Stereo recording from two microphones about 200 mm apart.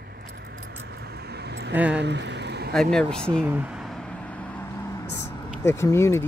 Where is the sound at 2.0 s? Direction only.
60° right (ahead or behind).